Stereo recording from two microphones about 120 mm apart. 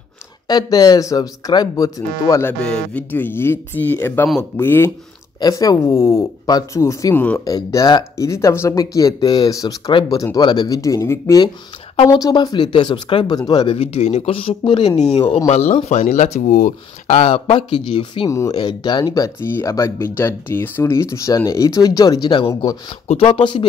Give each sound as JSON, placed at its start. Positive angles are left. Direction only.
{"t": 0.5, "sound": "speech", "side_deg": 35}
{"t": 2.6, "sound": "speech", "side_deg": 10}
{"t": 5.4, "sound": "speech", "side_deg": 30}
{"t": 7.2, "sound": "speech", "side_deg": 15}
{"t": 7.4, "sound": "speech", "side_deg": 30}
{"t": 13.7, "sound": "speech", "side_deg": 60}
{"t": 15.8, "sound": "speech", "side_deg": 80}
{"t": 17.2, "sound": "speech", "side_deg": 50}
{"t": 18.3, "sound": "speech", "side_deg": 25}
{"t": 18.6, "sound": "speech", "side_deg": 40}
{"t": 23.0, "sound": "speech", "side_deg": 50}